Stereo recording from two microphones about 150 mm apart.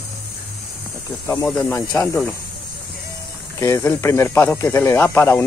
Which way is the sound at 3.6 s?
20° left (ahead or behind).